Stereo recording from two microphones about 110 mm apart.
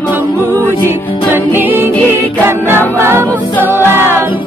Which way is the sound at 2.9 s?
20° right (ahead or behind).